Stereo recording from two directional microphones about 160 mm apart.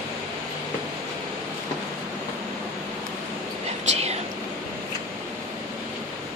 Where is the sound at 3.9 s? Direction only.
45° right (ahead or behind).